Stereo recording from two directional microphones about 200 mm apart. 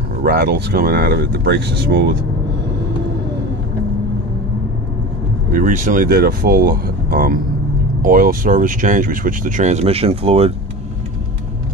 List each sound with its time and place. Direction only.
0.2 s speech: 50° right (ahead or behind)
5.5 s speech: 45° right (ahead or behind)